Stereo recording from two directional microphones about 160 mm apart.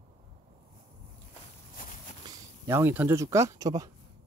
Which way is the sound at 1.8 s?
60° left (ahead or behind).